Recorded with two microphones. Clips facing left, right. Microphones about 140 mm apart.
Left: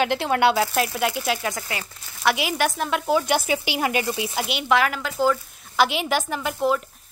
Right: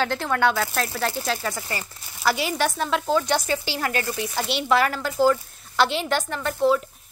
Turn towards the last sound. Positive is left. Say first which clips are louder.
# right 2 dB
turn(degrees=5)  # may be behind; listen again after turning